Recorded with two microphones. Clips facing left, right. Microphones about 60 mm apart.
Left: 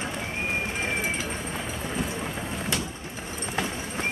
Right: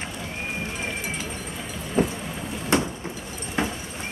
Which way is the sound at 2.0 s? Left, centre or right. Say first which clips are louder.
Right 10 dB; right.